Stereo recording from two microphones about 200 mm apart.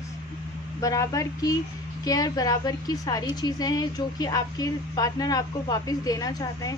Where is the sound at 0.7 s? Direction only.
15° left (ahead or behind).